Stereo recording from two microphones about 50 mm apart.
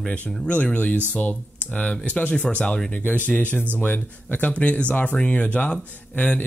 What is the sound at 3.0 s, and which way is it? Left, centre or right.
Speech, left.